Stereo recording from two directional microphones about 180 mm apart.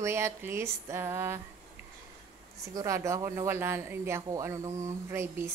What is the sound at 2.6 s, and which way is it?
Speech, 20° right (ahead or behind).